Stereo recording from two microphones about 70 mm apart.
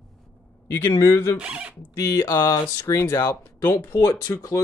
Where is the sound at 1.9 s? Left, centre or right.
Left.